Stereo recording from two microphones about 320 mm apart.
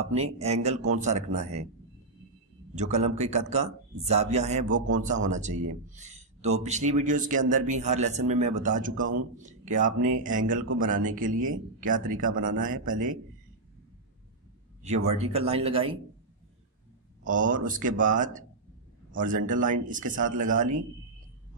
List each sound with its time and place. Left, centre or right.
0.1 s speech: centre
2.7 s speech: right
15.0 s speech: centre
17.2 s speech: right